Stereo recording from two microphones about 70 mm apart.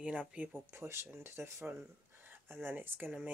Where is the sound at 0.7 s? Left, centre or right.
Right.